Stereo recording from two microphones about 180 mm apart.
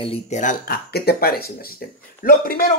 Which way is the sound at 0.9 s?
60° left (ahead or behind).